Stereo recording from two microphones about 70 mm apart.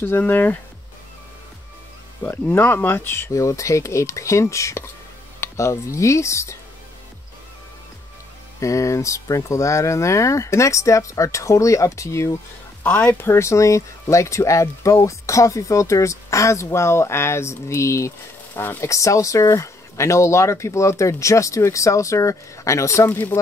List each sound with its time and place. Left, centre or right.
0.0 s speech: left
2.2 s speech: left
2.5 s speech: left
3.3 s speech: left
8.5 s speech: left
12.8 s speech: centre
13.2 s speech: left
18.5 s speech: left
18.9 s speech: left